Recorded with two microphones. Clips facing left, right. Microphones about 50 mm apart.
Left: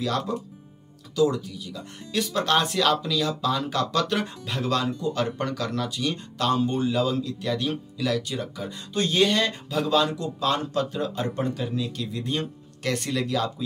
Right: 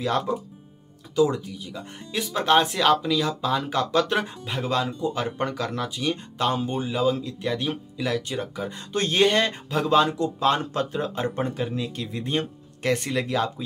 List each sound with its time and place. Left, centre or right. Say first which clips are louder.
0.3 s speech: right 2 dB; centre